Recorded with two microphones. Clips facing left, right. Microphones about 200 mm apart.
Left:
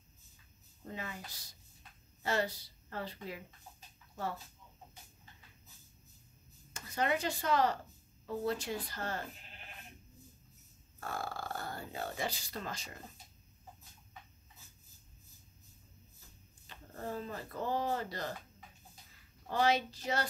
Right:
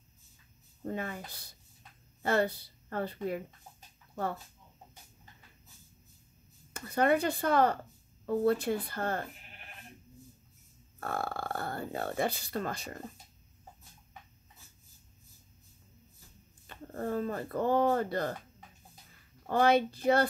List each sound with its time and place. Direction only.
0.8 s speech: 50° right (ahead or behind)
6.7 s speech: 55° right (ahead or behind)
11.0 s speech: 60° right (ahead or behind)
16.6 s speech: 55° right (ahead or behind)
19.4 s speech: 55° right (ahead or behind)